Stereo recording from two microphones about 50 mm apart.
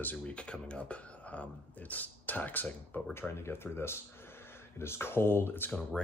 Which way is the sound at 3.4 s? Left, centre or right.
Left.